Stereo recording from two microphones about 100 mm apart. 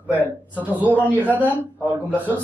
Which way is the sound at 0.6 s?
15° right (ahead or behind).